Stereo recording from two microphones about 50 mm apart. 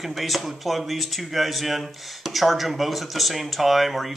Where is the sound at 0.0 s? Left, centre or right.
Centre.